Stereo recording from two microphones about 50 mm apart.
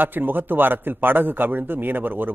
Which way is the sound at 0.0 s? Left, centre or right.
Right.